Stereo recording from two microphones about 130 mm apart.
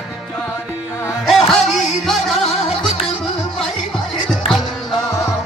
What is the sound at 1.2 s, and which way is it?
Music, centre (ahead or behind).